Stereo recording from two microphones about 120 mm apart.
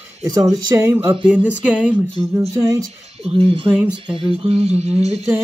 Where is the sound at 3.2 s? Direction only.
55° right (ahead or behind).